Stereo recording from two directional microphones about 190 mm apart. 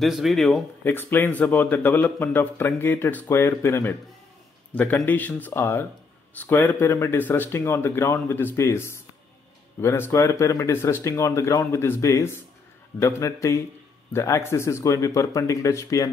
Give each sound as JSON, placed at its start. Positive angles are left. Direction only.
{"t": 0.0, "sound": "speech", "side_deg": 0}
{"t": 0.8, "sound": "a man's voice", "side_deg": 10}